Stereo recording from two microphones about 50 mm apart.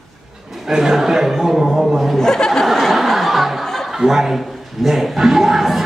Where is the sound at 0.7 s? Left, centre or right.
Centre.